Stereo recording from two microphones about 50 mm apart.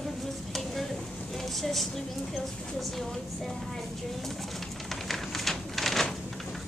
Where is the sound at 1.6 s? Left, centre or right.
Centre.